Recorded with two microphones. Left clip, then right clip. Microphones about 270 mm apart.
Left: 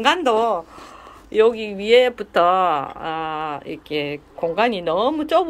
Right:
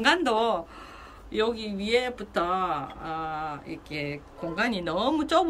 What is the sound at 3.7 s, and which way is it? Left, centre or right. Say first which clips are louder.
Speech: left 9 dB; left.